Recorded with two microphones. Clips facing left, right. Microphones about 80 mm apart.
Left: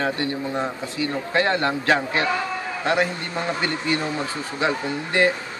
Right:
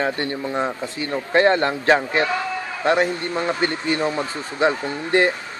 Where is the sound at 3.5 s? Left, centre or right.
Right.